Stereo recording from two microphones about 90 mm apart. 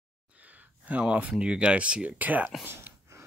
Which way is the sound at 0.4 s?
15° right (ahead or behind).